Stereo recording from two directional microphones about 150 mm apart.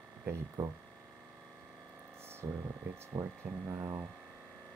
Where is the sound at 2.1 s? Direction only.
15° right (ahead or behind).